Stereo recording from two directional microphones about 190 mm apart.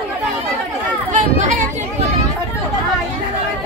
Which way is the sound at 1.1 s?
40° right (ahead or behind).